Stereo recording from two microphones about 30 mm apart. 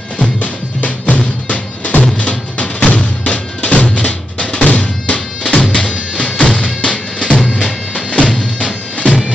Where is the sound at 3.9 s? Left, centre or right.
Left.